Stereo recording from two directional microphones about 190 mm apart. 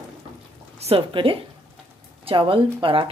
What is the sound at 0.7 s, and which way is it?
Speech, 30° right (ahead or behind).